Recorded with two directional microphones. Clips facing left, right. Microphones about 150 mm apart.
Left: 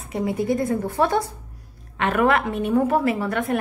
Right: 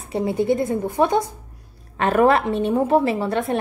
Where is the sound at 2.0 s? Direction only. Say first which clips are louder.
Right 3 dB; 35° right (ahead or behind).